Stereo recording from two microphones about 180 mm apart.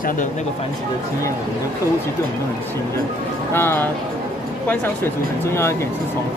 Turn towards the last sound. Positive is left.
turn(degrees=15)  # may be behind; listen again after turning